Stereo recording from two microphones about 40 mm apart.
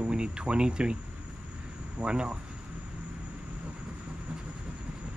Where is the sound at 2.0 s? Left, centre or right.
Right.